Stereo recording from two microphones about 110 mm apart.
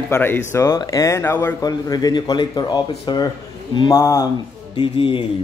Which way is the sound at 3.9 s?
25° left (ahead or behind).